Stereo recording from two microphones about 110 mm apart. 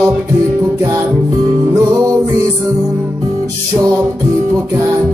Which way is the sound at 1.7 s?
25° right (ahead or behind).